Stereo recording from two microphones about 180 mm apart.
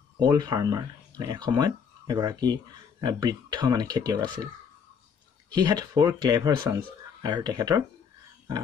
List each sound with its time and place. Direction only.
0.2 s speech: 25° right (ahead or behind)
5.5 s speech: 25° right (ahead or behind)